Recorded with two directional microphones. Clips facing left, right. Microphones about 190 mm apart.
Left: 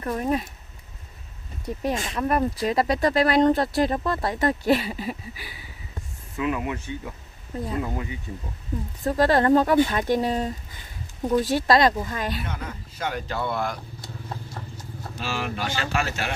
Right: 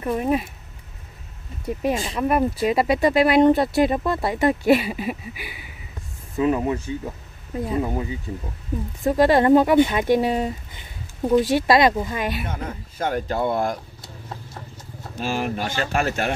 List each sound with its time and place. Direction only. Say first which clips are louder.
0.0 s speech: right 3 dB; 10° right (ahead or behind)
1.8 s speech: right 3 dB; 10° right (ahead or behind)
6.3 s speech: right 6 dB; 30° right (ahead or behind); by 12.4 s 15° right (ahead or behind)
12.9 s speech: right 5 dB; 50° right (ahead or behind)
15.1 s speech: right 5 dB; 45° right (ahead or behind)